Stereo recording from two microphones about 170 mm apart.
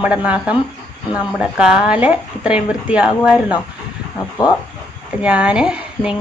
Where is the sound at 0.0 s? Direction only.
5° right (ahead or behind).